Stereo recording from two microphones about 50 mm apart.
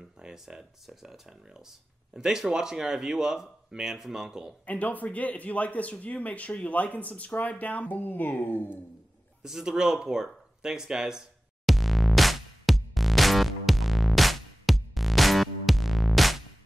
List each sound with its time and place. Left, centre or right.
0.2 s speech: centre
4.6 s speech: left
9.4 s speech: centre
11.6 s music: centre